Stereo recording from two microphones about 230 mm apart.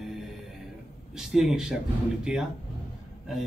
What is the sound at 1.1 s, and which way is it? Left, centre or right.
Speech, centre.